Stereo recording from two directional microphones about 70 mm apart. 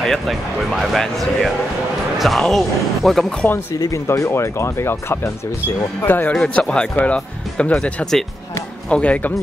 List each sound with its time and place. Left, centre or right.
0.0 s speech: centre
3.7 s speech: left
4.1 s speech: left
6.3 s speech: centre